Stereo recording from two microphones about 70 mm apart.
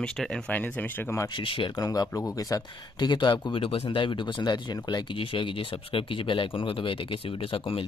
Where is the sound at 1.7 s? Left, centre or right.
Left.